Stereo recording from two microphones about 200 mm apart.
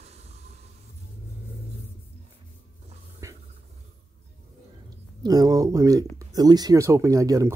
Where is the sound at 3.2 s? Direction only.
15° right (ahead or behind).